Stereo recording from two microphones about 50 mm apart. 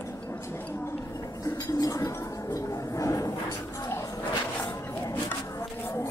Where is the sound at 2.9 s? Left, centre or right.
Left.